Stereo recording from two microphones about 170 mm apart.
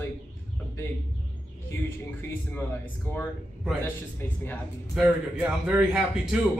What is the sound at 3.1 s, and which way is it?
Speech, 15° right (ahead or behind).